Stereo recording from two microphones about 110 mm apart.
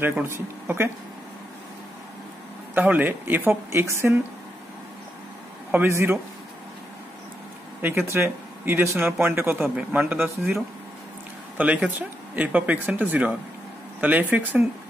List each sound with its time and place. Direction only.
0.0 s speech: 20° right (ahead or behind)
2.7 s speech: 15° right (ahead or behind)
5.7 s speech: 20° right (ahead or behind)
8.1 s speech: 20° right (ahead or behind)
11.5 s speech: 15° right (ahead or behind)